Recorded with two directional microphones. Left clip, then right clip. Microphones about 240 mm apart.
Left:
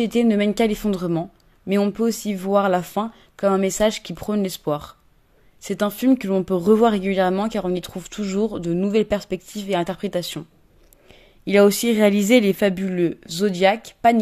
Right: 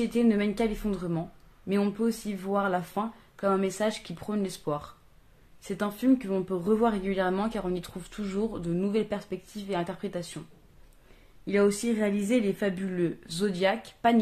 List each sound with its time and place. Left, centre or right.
0.0 s speech: left
11.4 s speech: left